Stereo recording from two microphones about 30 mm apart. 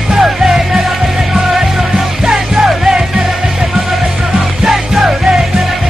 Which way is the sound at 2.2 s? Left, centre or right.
Right.